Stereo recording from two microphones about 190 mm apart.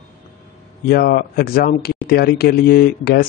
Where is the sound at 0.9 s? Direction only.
50° left (ahead or behind).